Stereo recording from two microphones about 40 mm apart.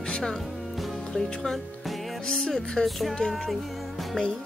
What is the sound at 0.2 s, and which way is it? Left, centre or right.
Music, centre.